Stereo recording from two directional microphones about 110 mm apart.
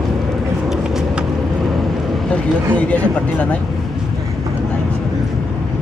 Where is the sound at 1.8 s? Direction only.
5° left (ahead or behind).